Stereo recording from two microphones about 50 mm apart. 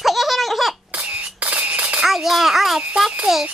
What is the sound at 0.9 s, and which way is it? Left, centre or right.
Cough, right.